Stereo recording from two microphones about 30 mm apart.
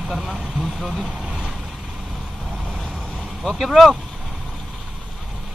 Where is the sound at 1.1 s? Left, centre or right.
Right.